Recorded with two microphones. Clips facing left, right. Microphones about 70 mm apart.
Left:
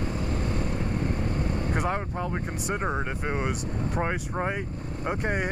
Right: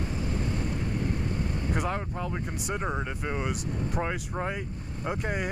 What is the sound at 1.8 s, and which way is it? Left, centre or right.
Speech, centre.